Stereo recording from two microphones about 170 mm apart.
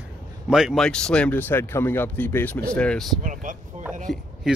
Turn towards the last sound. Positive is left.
turn(degrees=-5)  # may be behind; listen again after turning